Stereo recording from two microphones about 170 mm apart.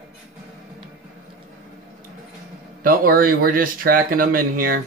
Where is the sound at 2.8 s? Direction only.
55° right (ahead or behind).